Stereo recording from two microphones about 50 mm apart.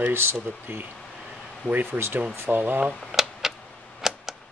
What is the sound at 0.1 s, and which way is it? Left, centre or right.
Speech, right.